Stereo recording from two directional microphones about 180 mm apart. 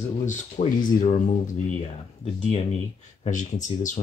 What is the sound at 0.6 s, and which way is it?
Speech, 40° left (ahead or behind).